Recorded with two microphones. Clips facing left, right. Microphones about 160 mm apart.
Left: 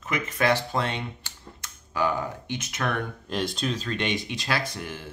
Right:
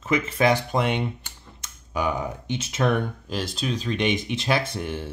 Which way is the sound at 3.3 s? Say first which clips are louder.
Left 1 dB; centre (ahead or behind).